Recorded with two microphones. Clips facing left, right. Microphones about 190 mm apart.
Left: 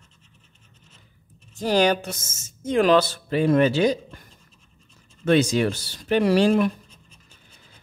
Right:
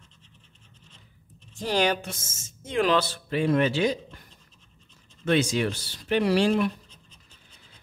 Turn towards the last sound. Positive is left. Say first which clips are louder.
# left 2 dB
turn(degrees=10)  # may be behind; listen again after turning